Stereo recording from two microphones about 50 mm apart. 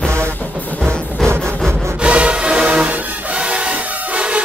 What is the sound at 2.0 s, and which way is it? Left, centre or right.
Music, right.